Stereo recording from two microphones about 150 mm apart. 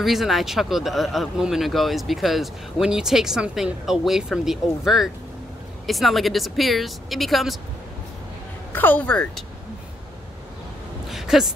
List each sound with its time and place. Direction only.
0.0 s speech: centre (ahead or behind)
8.7 s speech: 10° left (ahead or behind)
11.1 s a sound: centre (ahead or behind)